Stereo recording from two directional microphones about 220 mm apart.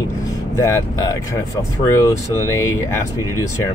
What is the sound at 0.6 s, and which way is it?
Speech, 15° left (ahead or behind).